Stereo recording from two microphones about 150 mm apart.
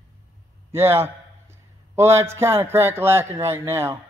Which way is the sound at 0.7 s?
15° right (ahead or behind).